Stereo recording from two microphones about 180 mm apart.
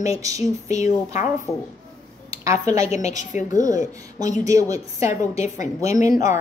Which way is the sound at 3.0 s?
40° left (ahead or behind).